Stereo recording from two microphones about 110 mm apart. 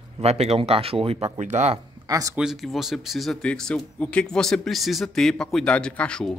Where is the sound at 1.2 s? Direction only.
75° right (ahead or behind).